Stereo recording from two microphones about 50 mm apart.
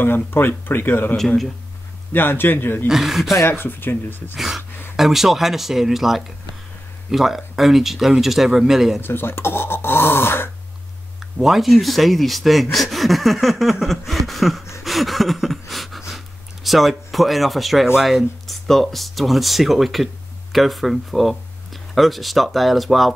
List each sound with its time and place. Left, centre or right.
0.0 s speech: left
1.1 s a man's voice: centre
2.1 s speech: left
2.9 s speech: centre
3.4 s speech: left
4.4 s speech: centre
9.0 s speech: left
11.3 s speech: centre
14.8 s a sound: centre
16.6 s speech: centre